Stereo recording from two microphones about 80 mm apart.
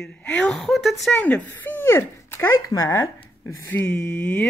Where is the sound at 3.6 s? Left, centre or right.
Left.